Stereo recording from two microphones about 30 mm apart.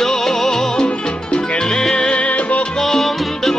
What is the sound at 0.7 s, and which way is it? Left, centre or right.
Music, left.